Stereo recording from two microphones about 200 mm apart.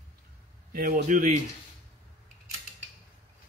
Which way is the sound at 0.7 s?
50° right (ahead or behind).